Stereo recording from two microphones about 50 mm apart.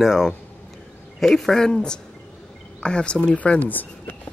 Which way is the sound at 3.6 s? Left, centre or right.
Left.